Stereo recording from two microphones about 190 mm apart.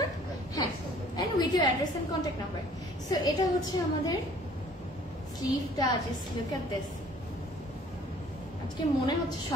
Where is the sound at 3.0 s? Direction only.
20° left (ahead or behind).